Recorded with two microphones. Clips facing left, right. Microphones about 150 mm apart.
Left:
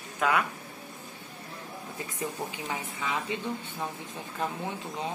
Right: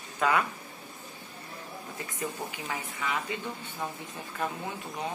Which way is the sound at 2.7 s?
20° left (ahead or behind).